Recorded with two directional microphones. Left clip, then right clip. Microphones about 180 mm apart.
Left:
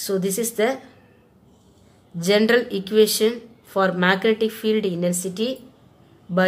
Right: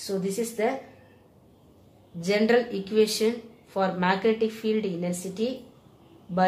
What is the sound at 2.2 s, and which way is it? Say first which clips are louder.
Speech: left 5 dB; 40° left (ahead or behind).